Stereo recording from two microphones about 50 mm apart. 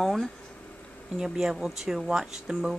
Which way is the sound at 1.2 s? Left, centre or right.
Centre.